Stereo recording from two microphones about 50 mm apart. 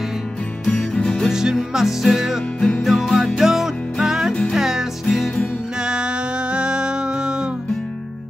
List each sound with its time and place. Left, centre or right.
0.7 s music: centre
1.3 s music: centre